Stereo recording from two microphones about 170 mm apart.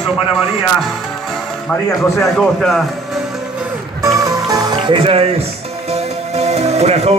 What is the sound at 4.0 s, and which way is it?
Music, 20° right (ahead or behind).